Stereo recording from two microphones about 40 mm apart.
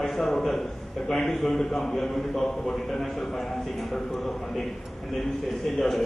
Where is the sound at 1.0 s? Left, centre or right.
Centre.